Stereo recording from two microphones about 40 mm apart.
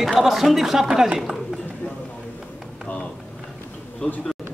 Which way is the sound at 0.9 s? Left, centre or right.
Centre.